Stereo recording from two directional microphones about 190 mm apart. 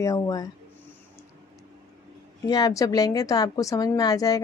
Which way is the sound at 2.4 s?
20° left (ahead or behind).